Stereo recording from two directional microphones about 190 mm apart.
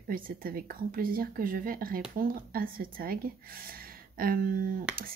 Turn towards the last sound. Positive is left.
turn(degrees=-45)  # may be behind; listen again after turning